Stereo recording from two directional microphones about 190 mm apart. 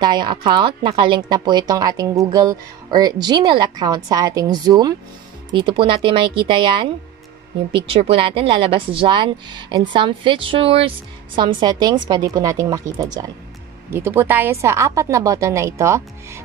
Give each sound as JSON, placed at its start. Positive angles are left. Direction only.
{"t": 0.0, "sound": "a woman's voice", "side_deg": -20}